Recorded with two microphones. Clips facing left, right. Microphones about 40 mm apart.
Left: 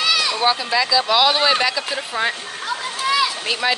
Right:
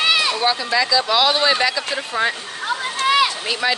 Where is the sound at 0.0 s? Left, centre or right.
Right.